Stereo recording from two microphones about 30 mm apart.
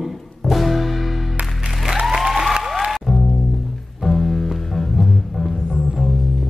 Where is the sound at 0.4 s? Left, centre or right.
Centre.